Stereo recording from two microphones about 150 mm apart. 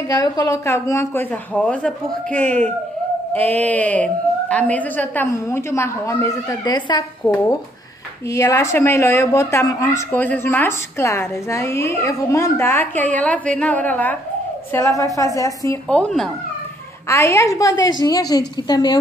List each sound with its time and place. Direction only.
0.1 s a woman's voice: 25° left (ahead or behind)
15.9 s speech: 5° left (ahead or behind)
17.1 s a woman's voice: 20° left (ahead or behind)